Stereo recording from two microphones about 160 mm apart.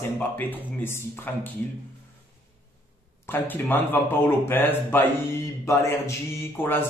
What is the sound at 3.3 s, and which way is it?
Speech, 15° left (ahead or behind).